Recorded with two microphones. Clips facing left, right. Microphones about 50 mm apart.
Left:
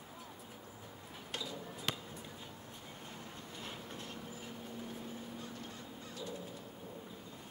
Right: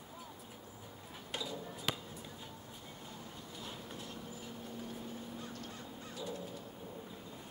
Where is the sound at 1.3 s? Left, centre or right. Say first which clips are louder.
Right 2 dB; centre.